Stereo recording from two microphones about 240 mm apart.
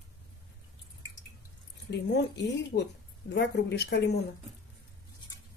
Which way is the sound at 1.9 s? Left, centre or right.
Left.